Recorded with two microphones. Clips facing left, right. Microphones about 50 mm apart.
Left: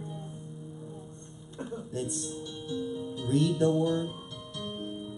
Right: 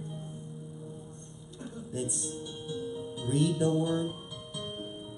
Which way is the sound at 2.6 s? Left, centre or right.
Centre.